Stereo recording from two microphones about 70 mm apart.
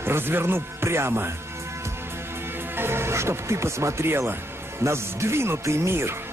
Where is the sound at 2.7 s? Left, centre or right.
Right.